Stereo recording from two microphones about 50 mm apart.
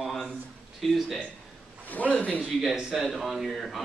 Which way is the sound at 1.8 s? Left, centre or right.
Left.